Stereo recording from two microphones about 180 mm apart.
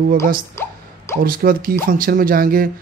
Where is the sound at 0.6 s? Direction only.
15° left (ahead or behind).